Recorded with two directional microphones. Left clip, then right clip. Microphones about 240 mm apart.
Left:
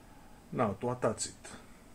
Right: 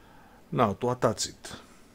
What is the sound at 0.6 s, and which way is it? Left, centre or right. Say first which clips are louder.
Speech: right 7 dB; right.